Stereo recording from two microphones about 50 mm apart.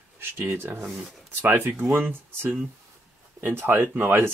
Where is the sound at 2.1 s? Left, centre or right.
Right.